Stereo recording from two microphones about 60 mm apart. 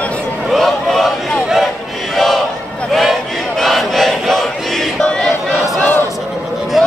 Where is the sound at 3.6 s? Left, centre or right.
Centre.